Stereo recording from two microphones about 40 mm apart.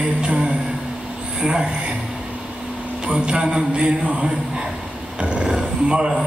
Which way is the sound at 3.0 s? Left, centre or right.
Right.